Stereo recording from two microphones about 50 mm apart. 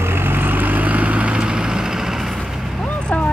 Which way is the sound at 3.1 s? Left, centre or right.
Left.